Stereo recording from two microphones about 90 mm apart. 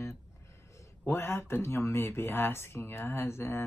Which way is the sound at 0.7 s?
30° left (ahead or behind).